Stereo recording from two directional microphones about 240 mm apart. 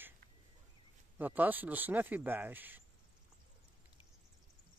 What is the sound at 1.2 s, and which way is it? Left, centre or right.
Speech, centre.